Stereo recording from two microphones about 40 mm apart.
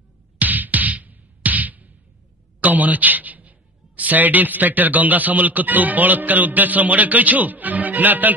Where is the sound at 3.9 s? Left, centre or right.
Right.